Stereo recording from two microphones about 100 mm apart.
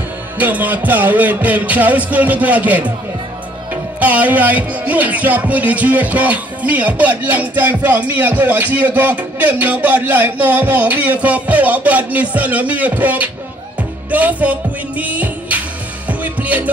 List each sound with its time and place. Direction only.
0.4 s music: 15° right (ahead or behind)
4.0 s music: 15° right (ahead or behind)